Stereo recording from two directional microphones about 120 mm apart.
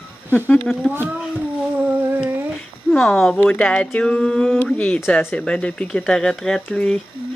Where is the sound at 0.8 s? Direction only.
5° left (ahead or behind).